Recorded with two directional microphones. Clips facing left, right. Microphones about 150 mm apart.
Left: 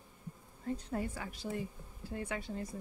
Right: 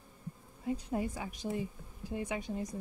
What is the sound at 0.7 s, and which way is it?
A woman's voice, 10° right (ahead or behind).